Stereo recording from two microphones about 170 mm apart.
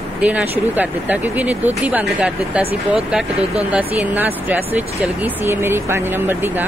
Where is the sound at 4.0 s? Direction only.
10° right (ahead or behind).